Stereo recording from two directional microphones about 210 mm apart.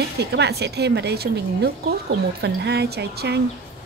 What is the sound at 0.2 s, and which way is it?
Speech, 50° right (ahead or behind).